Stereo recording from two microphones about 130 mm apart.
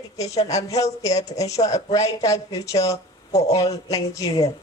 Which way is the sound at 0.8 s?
25° left (ahead or behind).